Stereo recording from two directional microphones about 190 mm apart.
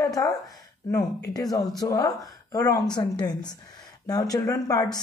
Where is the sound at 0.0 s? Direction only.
20° left (ahead or behind).